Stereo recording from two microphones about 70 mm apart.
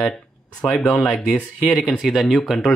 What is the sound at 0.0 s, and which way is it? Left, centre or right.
Speech, centre.